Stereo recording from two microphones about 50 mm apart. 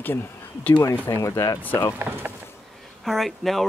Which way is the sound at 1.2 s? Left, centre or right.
Left.